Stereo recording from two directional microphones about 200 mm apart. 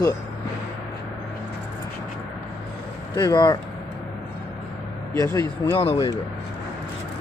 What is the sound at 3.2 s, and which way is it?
Speech, 20° left (ahead or behind).